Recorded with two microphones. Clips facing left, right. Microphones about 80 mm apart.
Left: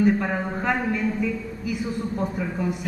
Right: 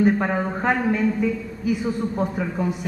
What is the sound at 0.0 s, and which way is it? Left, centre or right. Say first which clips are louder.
A man's voice: right 2 dB; right.